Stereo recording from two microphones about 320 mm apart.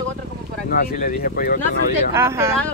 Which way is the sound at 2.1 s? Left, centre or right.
Centre.